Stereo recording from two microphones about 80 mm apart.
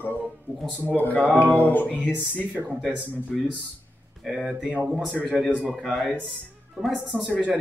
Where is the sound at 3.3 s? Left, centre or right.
Centre.